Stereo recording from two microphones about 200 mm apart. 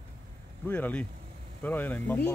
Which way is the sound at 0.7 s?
10° left (ahead or behind).